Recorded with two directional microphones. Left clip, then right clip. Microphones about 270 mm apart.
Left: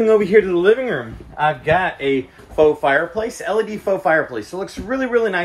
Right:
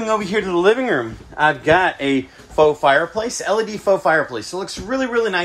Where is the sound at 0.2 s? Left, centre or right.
Centre.